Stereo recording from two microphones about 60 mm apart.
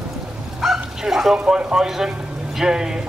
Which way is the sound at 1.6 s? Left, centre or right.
Centre.